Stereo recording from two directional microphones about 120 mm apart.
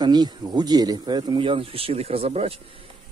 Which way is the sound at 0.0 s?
35° right (ahead or behind).